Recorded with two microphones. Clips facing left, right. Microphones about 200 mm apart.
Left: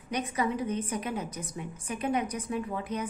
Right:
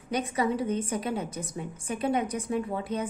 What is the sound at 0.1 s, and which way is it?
A woman's voice, 30° right (ahead or behind).